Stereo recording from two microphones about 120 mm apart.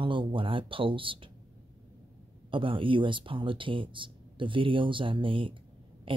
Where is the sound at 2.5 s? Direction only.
45° right (ahead or behind).